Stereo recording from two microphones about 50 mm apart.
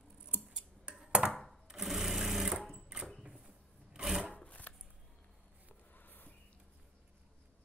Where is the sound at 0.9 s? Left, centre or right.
Centre.